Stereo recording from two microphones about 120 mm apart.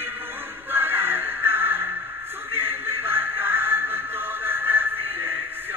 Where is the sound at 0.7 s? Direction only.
20° right (ahead or behind).